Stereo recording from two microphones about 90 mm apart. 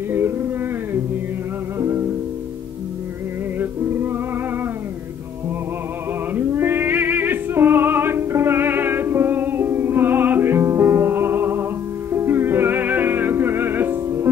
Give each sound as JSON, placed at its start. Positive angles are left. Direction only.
{"t": 1.8, "sound": "music", "side_deg": -30}
{"t": 3.5, "sound": "music", "side_deg": -25}
{"t": 6.3, "sound": "music", "side_deg": -25}